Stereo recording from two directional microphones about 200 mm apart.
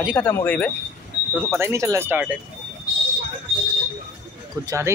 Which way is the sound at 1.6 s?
15° right (ahead or behind).